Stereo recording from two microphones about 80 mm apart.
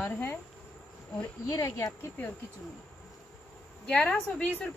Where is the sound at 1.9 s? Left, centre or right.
Left.